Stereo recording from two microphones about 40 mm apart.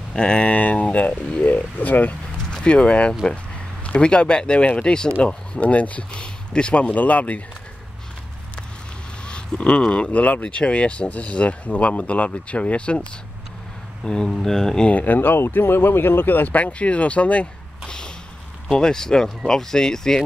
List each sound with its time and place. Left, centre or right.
0.2 s speech: left
2.5 s speech: left
6.2 s speech: left
9.2 s speech: left
10.1 s speech: left
14.0 s speech: left
15.0 s speech: left
15.3 s speech: left
16.3 s speech: left
16.7 s speech: left
17.8 s a sound: left
18.7 s speech: centre